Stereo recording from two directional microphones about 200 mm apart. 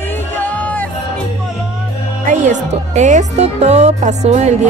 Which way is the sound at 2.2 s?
35° right (ahead or behind).